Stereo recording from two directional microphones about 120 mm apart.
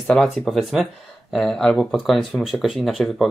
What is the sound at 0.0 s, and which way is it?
Speech, 5° left (ahead or behind).